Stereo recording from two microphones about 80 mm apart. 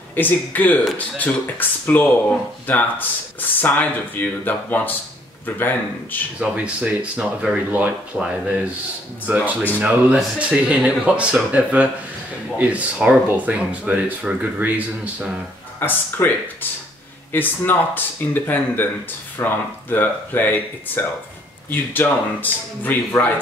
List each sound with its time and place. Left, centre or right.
0.1 s speech: left
6.4 s speech: centre
8.1 s speech: centre
15.8 s speech: left